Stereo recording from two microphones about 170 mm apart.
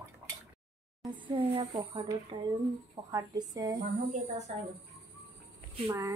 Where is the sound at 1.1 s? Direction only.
30° right (ahead or behind).